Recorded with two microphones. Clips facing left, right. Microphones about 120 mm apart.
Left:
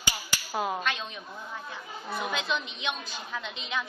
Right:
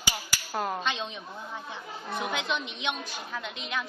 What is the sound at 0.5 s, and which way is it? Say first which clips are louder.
Speech: left 1 dB; 5° left (ahead or behind).